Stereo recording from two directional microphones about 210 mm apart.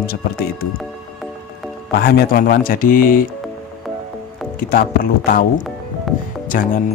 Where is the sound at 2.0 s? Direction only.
45° left (ahead or behind).